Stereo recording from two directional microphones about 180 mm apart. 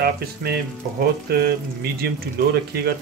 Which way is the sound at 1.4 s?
60° right (ahead or behind).